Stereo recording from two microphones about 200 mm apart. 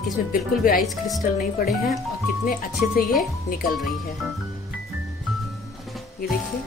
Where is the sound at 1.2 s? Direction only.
50° left (ahead or behind).